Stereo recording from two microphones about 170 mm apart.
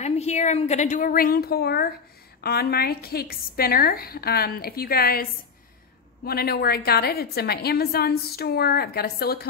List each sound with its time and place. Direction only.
0.0 s a woman's voice: 40° left (ahead or behind); by 5.2 s 60° left (ahead or behind)
6.2 s a woman's voice: 65° left (ahead or behind)